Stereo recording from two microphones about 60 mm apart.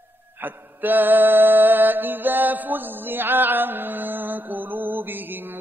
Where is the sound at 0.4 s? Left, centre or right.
Right.